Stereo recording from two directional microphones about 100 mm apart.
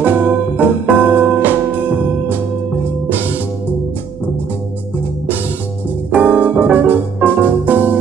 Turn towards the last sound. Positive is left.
turn(degrees=-20)  # may be behind; listen again after turning